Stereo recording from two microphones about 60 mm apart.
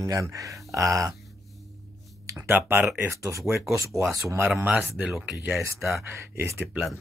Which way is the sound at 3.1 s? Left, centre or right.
Right.